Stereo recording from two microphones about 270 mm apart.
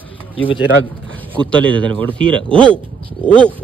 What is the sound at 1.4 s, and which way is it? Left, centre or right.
A man's voice, centre.